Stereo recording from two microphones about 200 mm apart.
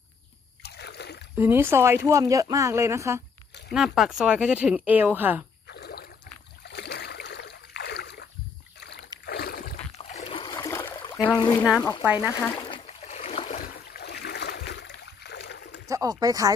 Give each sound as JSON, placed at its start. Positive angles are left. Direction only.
{"t": 0.7, "sound": "splash", "side_deg": 55}
{"t": 1.3, "sound": "speech", "side_deg": -10}
{"t": 3.7, "sound": "speech", "side_deg": 0}
{"t": 5.7, "sound": "trickle", "side_deg": 55}
{"t": 6.7, "sound": "boat", "side_deg": 55}
{"t": 9.9, "sound": "a sound", "side_deg": 30}
{"t": 11.0, "sound": "a sound", "side_deg": 25}
{"t": 11.3, "sound": "speech", "side_deg": 20}
{"t": 12.0, "sound": "speech", "side_deg": -10}
{"t": 12.4, "sound": "a sound", "side_deg": 20}
{"t": 14.0, "sound": "boat", "side_deg": 55}
{"t": 15.9, "sound": "speech", "side_deg": -20}